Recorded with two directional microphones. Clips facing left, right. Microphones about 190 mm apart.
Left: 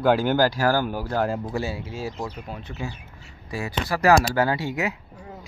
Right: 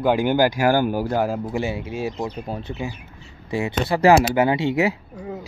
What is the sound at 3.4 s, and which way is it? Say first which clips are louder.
Speech: right 5 dB; 25° right (ahead or behind).